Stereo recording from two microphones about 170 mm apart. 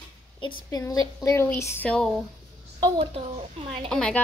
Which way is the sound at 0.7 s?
20° left (ahead or behind).